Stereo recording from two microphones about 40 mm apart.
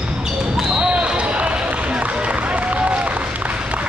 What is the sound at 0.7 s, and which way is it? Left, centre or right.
Basketball bounce, right.